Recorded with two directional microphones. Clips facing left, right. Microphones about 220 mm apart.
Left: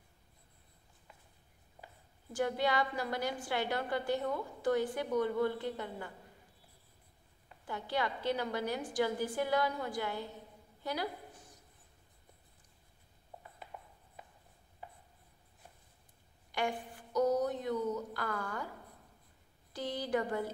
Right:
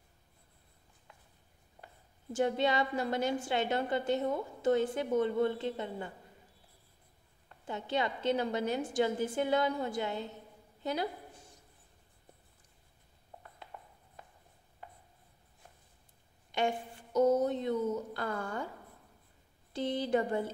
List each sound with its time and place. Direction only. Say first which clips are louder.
2.3 s a woman's voice: right 3 dB; 25° right (ahead or behind)
7.6 s a woman's voice: right 2 dB; 25° right (ahead or behind)
13.4 s writing: even; 10° left (ahead or behind)
16.5 s a sound: right 3 dB; 25° right (ahead or behind)
19.7 s a woman's voice: right 4 dB; 25° right (ahead or behind)